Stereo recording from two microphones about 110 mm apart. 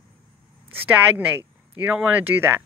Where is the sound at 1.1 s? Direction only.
15° right (ahead or behind).